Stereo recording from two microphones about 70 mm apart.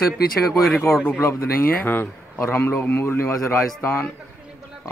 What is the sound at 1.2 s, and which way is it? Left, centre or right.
Speech, left.